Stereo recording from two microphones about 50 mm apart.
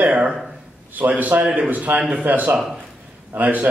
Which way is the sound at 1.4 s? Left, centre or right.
Centre.